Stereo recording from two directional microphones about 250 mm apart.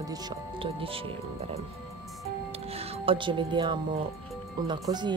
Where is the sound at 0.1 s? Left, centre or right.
Right.